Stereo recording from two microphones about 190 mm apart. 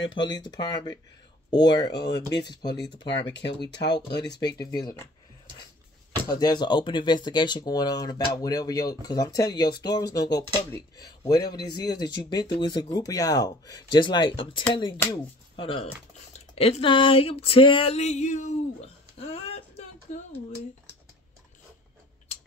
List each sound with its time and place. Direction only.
0.0 s speech: 25° left (ahead or behind)
3.2 s speech: 70° left (ahead or behind)
4.3 s speech: 20° left (ahead or behind)
6.2 s speech: 20° left (ahead or behind)
16.3 s a sound: 35° left (ahead or behind)